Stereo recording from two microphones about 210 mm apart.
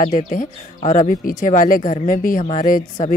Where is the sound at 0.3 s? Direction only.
40° left (ahead or behind).